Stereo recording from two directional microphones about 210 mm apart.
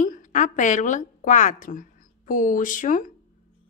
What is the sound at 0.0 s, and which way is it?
A woman's voice, 40° left (ahead or behind).